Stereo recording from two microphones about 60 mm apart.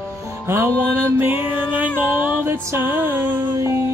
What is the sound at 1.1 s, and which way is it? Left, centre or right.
Music, right.